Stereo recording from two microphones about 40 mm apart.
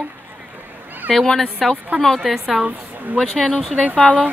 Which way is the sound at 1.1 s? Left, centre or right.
Centre.